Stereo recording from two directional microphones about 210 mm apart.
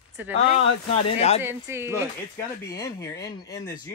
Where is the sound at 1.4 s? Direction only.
10° right (ahead or behind).